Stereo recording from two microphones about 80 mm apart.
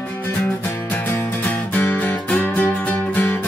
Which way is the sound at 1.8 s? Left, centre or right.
Left.